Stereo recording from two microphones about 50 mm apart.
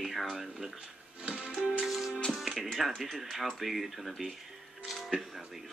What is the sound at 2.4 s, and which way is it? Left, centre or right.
Speech, centre.